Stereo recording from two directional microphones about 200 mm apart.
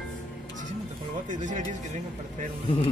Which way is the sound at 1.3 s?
40° right (ahead or behind).